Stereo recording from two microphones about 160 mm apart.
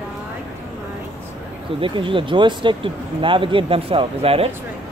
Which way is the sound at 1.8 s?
30° right (ahead or behind).